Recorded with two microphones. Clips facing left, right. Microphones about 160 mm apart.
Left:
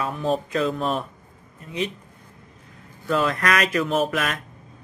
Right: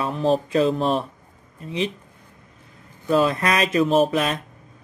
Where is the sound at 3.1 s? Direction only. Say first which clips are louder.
Right 3 dB; 20° right (ahead or behind).